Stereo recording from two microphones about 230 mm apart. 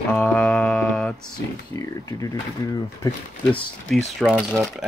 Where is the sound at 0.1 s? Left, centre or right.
Centre.